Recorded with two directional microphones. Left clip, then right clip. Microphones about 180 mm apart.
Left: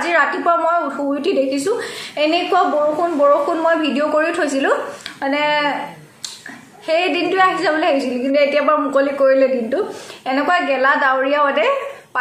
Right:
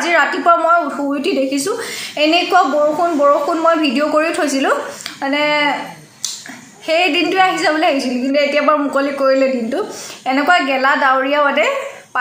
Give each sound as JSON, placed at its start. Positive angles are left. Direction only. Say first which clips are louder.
{"t": 0.0, "sound": "a woman's voice", "louder": "right 2 dB", "side_deg": -20}
{"t": 6.9, "sound": "a woman's voice", "louder": "right 2 dB", "side_deg": -20}